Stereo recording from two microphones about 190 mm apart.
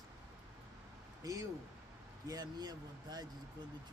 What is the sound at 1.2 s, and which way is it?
Speech, 20° right (ahead or behind).